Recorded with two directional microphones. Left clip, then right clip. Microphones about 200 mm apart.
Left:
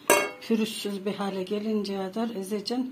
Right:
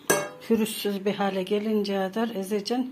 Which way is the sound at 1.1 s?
30° right (ahead or behind).